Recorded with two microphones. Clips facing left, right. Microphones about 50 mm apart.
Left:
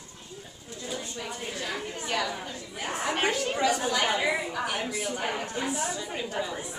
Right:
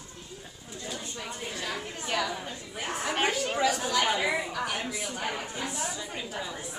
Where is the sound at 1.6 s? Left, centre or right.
Centre.